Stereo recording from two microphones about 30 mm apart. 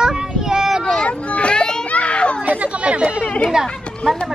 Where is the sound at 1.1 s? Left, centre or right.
Left.